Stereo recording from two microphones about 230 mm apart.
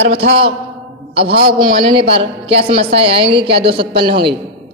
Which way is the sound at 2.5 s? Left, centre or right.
Right.